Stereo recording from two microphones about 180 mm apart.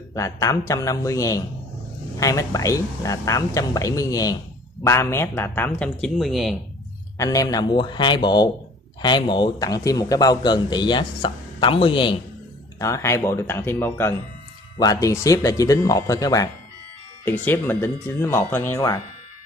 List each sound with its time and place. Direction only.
0.1 s a man's voice: 15° left (ahead or behind); by 6.5 s centre (ahead or behind)
7.2 s a man's voice: 20° left (ahead or behind)
12.7 s a man's voice: 15° left (ahead or behind)